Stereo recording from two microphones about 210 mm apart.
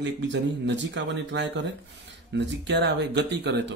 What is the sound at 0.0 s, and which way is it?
Speech, 60° right (ahead or behind).